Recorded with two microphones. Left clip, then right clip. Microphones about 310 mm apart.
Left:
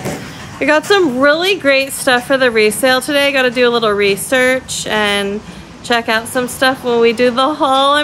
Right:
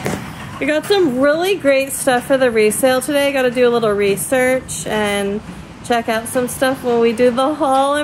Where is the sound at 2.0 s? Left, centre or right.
Centre.